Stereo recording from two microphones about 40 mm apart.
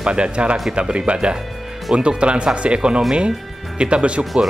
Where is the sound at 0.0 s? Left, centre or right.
Right.